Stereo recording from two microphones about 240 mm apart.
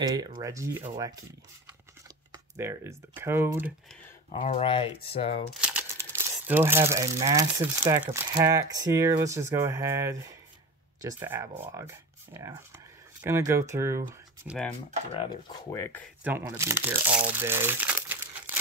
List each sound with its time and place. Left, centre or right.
0.0 s speech: centre
2.3 s speech: centre
4.3 s speech: left
5.5 s speech: centre
15.1 s speech: centre
16.3 s speech: centre